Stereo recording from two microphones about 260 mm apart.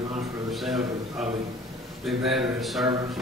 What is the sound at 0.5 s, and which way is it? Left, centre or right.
Speech, centre.